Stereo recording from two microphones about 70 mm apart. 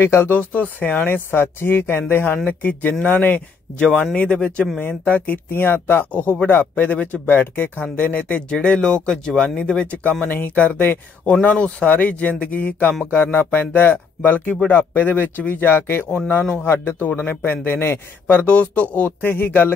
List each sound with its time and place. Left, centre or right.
0.0 s a man's voice: left
0.3 s speech: left
3.8 s speech: centre; by 14.4 s left
14.4 s a man's voice: centre
18.5 s speech: centre
19.0 s speech: left